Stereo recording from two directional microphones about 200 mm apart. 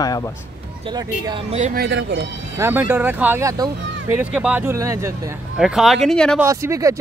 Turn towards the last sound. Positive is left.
turn(degrees=-15)  # may be behind; listen again after turning